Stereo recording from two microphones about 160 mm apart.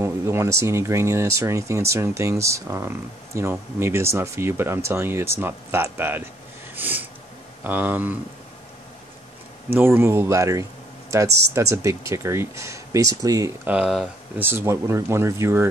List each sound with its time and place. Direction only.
0.0 s speech: 15° right (ahead or behind)
6.7 s snort: 10° right (ahead or behind)
7.6 s speech: 10° right (ahead or behind)
9.7 s speech: 15° right (ahead or behind)
13.7 s speech: 5° right (ahead or behind)